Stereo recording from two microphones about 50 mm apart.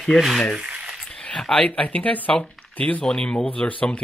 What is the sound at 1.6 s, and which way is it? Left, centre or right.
Speech, left.